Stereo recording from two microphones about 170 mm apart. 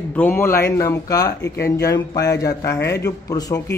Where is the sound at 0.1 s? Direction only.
10° left (ahead or behind).